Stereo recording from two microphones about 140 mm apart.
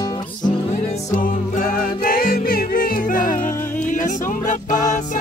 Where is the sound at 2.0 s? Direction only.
90° left; by 4.5 s 70° left (ahead or behind).